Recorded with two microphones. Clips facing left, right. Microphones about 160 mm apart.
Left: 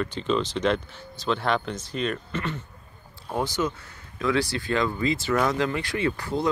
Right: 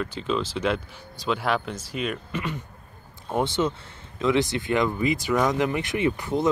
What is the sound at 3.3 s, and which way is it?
Speech, 25° right (ahead or behind).